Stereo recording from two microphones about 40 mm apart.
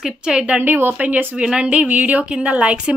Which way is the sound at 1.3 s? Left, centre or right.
Right.